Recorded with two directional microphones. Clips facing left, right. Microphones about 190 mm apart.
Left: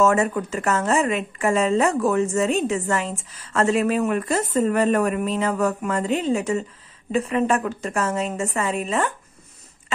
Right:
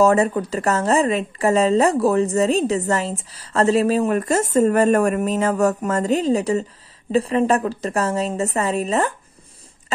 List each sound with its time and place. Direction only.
0.0 s a woman's voice: 35° right (ahead or behind)